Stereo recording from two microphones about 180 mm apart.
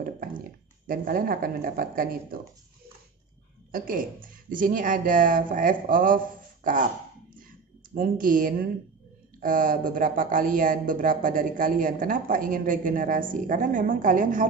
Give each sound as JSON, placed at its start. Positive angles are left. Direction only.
{"t": 0.0, "sound": "speech", "side_deg": -50}
{"t": 3.7, "sound": "speech", "side_deg": -50}
{"t": 7.9, "sound": "speech", "side_deg": -50}